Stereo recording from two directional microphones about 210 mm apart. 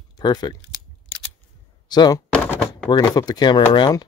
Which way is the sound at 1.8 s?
20° left (ahead or behind).